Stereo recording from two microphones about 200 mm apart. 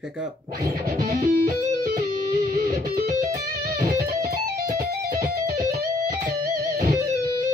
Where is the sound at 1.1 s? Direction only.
45° right (ahead or behind).